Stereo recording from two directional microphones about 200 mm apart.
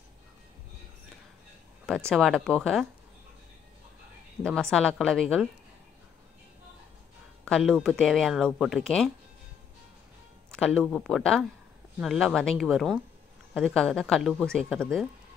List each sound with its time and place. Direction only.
1.9 s speech: 5° left (ahead or behind)
4.4 s speech: 5° left (ahead or behind)
7.4 s speech: 5° left (ahead or behind)
10.5 s speech: 5° left (ahead or behind)